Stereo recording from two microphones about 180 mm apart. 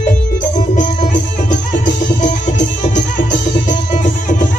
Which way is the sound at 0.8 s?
45° left (ahead or behind).